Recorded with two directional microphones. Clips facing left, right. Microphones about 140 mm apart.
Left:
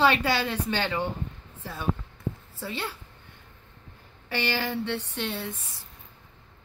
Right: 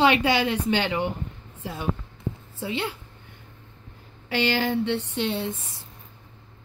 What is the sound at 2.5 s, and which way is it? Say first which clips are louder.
Speech: right 7 dB; 20° right (ahead or behind).